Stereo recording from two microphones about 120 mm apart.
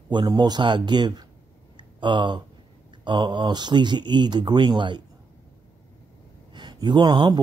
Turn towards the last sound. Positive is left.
turn(degrees=-35)  # may be behind; listen again after turning